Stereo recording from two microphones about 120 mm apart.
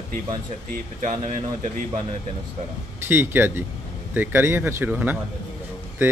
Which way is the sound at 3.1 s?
20° right (ahead or behind).